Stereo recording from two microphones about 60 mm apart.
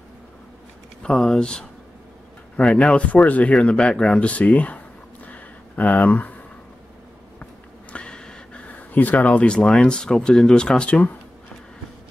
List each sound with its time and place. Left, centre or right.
1.0 s speech: centre
3.5 s speech: centre
5.2 s a sound: left
7.9 s speech: centre